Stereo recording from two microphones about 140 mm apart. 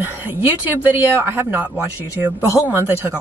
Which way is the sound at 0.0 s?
15° right (ahead or behind).